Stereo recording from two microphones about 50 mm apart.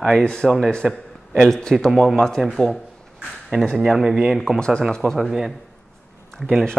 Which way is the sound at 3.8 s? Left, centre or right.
Centre.